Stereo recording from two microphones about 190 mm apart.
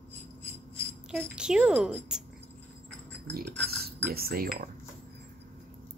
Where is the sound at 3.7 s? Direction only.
55° right (ahead or behind).